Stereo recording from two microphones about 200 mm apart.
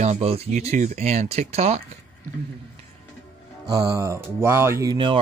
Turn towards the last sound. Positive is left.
turn(degrees=-25)  # may be behind; listen again after turning